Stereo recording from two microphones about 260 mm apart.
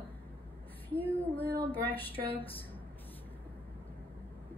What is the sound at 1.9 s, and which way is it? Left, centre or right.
Speech, left.